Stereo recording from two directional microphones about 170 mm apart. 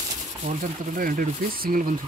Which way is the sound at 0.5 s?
55° right (ahead or behind).